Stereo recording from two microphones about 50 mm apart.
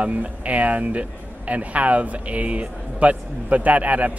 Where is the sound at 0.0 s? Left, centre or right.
Right.